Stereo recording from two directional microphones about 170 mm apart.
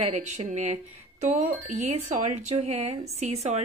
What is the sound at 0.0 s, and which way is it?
A woman's voice, 45° right (ahead or behind).